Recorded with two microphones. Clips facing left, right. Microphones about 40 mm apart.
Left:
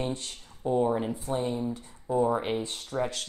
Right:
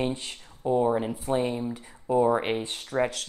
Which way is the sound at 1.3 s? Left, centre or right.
Right.